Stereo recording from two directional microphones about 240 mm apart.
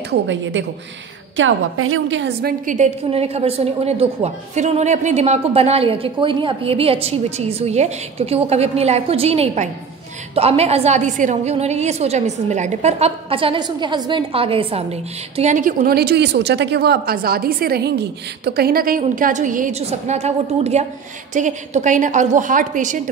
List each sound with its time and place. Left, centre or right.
0.1 s a woman's voice: right